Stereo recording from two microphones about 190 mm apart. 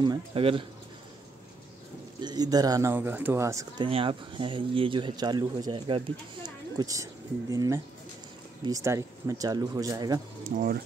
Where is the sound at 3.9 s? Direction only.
30° right (ahead or behind).